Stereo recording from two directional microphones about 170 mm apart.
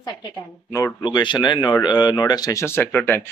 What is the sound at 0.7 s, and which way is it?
Speech, 20° left (ahead or behind).